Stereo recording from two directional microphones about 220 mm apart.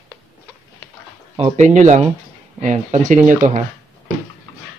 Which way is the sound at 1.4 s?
35° right (ahead or behind).